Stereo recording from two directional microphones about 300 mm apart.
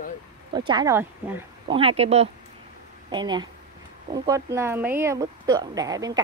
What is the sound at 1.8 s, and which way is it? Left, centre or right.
A woman's voice, centre.